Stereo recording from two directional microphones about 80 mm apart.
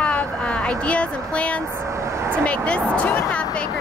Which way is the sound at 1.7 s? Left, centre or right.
Right.